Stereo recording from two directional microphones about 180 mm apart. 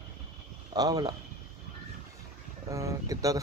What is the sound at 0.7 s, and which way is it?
Speech, 20° right (ahead or behind).